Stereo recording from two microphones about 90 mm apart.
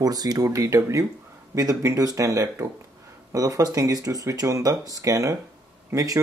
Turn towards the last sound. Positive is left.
turn(degrees=-40)  # may be behind; listen again after turning